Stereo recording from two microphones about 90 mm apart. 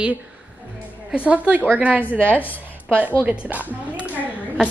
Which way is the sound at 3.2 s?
15° right (ahead or behind).